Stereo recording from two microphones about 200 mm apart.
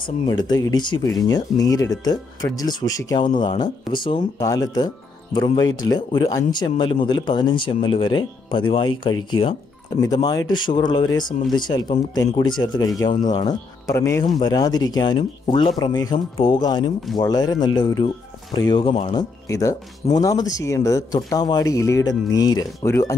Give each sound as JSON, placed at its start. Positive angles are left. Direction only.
{"t": 0.5, "sound": "speech", "side_deg": 20}
{"t": 3.9, "sound": "speech", "side_deg": 0}
{"t": 4.4, "sound": "speech", "side_deg": 20}
{"t": 19.4, "sound": "speech", "side_deg": 15}